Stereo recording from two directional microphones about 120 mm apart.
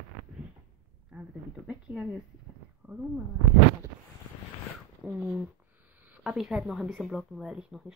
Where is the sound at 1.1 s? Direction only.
10° right (ahead or behind).